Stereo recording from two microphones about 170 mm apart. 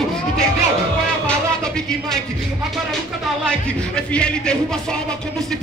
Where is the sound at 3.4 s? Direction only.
5° left (ahead or behind).